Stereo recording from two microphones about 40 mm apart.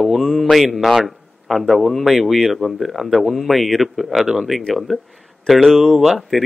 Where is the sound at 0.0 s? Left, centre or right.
Centre.